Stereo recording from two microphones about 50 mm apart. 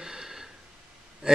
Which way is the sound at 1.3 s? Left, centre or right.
Centre.